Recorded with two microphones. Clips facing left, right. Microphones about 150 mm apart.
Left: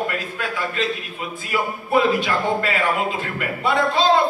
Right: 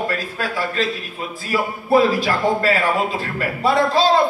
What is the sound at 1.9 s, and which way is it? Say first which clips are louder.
A man's voice: right 3 dB; 35° right (ahead or behind).